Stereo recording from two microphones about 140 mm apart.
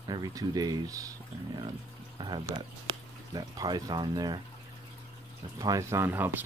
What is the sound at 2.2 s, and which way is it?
Speech, 35° right (ahead or behind).